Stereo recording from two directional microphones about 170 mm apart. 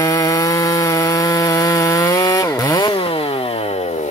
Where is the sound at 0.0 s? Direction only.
20° left (ahead or behind).